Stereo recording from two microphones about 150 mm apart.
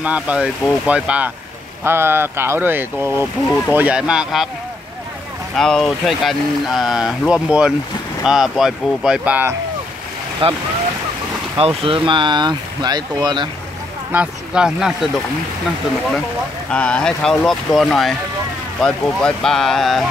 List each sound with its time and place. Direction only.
0.0 s speech: 10° right (ahead or behind)
5.6 s speech: 5° left (ahead or behind)
10.4 s speech: 40° right (ahead or behind)
14.1 s speech: 5° right (ahead or behind)
16.7 s speech: 5° left (ahead or behind)